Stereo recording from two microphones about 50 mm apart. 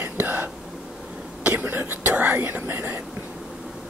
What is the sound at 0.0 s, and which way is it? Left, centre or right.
Whispering, right.